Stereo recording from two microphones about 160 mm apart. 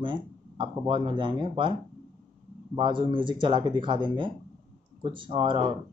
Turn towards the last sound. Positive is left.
turn(degrees=-30)  # may be behind; listen again after turning